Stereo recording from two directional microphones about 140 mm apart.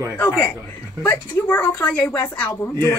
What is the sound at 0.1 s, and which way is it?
Speech, 15° left (ahead or behind).